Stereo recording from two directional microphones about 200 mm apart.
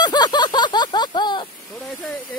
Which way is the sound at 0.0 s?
20° left (ahead or behind).